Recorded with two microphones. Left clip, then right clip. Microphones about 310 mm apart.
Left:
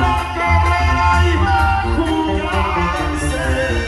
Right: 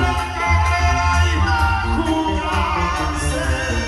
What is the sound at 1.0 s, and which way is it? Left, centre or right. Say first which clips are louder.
Music: left 4 dB; centre.